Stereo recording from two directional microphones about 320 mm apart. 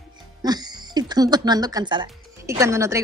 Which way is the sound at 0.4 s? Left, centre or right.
Centre.